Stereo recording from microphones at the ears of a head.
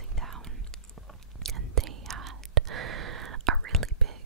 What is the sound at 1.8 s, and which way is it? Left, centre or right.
Whispering, right.